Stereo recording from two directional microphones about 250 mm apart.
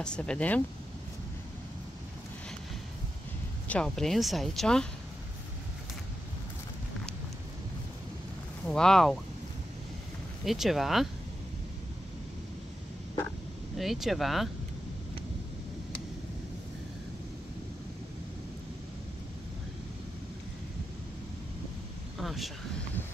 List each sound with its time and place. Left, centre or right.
0.0 s speech: centre
3.6 s speech: centre
8.6 s speech: centre
10.4 s speech: centre
13.7 s speech: centre
22.2 s a sound: centre